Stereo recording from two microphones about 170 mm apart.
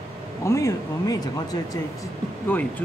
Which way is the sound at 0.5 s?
20° left (ahead or behind).